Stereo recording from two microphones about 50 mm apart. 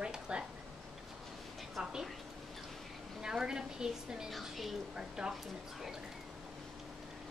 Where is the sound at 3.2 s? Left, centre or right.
Centre.